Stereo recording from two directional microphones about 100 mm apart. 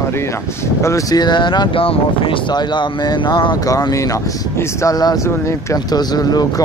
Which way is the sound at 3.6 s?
35° left (ahead or behind).